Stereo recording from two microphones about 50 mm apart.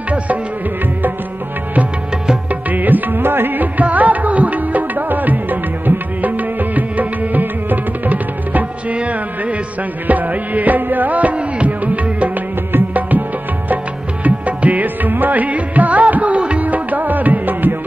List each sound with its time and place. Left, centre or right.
2.7 s music: right
14.2 s music: right